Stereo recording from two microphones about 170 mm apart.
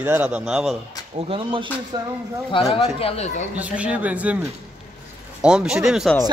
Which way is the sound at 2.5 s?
30° left (ahead or behind).